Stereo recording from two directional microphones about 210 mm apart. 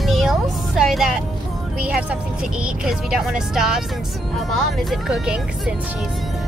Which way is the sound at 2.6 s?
5° right (ahead or behind).